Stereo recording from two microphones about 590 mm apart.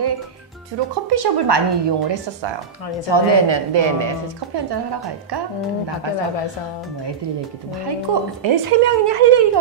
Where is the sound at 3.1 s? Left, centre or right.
Right.